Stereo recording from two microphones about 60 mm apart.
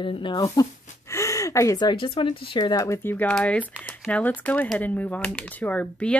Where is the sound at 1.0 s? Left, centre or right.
Left.